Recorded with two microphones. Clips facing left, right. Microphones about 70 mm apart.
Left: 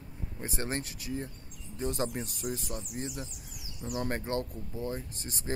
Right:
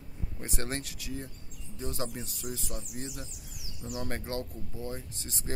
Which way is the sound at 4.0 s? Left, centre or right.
Left.